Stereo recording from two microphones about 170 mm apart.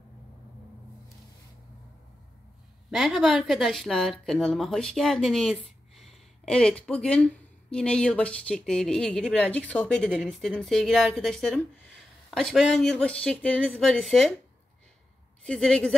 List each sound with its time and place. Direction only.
2.9 s speech: 5° right (ahead or behind)
15.4 s speech: 5° left (ahead or behind)